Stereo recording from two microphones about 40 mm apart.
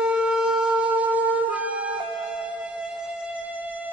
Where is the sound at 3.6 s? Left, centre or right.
Right.